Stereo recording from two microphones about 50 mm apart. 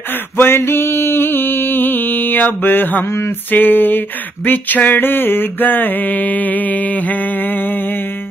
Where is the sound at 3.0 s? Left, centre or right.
Left.